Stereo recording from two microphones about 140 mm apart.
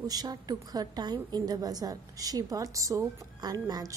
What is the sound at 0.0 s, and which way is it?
A woman's voice, 30° right (ahead or behind).